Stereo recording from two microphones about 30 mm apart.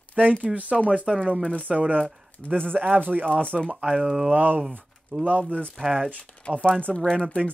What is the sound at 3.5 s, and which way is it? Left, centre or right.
Speech, centre.